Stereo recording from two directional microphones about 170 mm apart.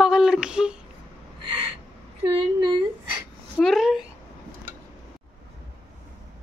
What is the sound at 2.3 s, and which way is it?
Speech, 30° right (ahead or behind).